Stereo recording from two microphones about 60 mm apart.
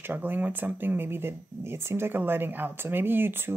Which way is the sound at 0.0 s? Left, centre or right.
Right.